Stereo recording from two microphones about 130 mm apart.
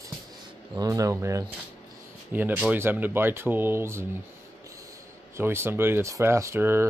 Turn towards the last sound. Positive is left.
turn(degrees=-20)  # may be behind; listen again after turning